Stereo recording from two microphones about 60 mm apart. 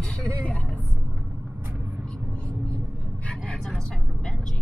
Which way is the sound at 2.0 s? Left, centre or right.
Centre.